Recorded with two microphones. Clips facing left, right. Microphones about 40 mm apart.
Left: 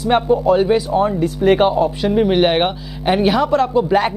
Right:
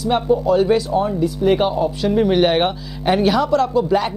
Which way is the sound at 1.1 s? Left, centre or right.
Left.